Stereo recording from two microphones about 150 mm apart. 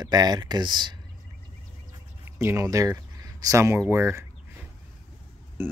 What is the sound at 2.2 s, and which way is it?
Speech, 15° right (ahead or behind).